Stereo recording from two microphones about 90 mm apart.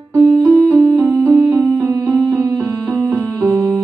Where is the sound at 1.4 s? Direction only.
35° right (ahead or behind).